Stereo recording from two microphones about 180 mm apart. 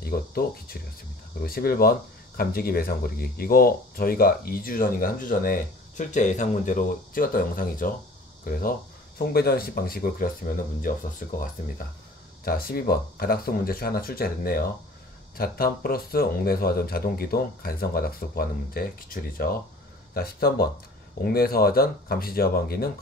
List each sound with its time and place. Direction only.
0.0 s speech: 55° left (ahead or behind)